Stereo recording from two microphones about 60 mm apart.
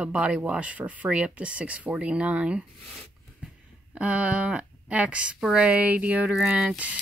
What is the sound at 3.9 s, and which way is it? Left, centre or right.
Speech, centre.